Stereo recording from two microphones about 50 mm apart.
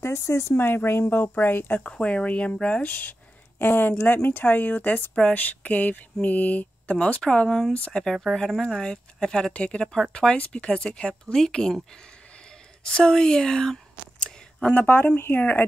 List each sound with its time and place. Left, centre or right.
0.0 s speech: left
0.7 s speech: left
1.8 s speech: left
7.2 s speech: centre
12.8 s speech: centre
14.2 s a sound: centre
14.8 s speech: left